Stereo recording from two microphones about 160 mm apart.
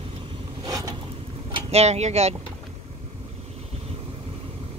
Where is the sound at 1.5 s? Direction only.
40° right (ahead or behind).